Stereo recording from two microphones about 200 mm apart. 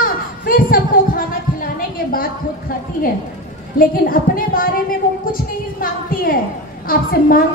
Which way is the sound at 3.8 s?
45° left (ahead or behind).